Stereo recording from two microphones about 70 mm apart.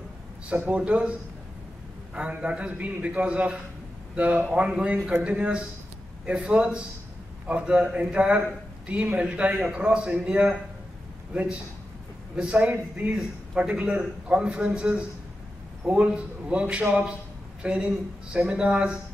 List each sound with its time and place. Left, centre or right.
0.6 s a man's voice: centre
2.1 s a man's voice: centre